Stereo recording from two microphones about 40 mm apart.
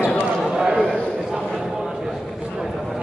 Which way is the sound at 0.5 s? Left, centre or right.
Right.